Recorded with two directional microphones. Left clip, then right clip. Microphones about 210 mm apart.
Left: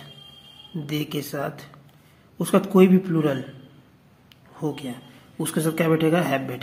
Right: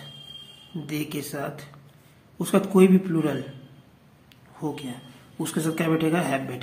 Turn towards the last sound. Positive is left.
turn(degrees=15)  # may be behind; listen again after turning